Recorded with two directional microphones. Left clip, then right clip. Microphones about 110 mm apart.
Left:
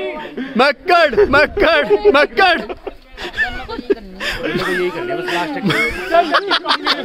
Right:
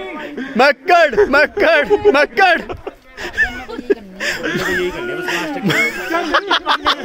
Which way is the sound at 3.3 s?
10° left (ahead or behind).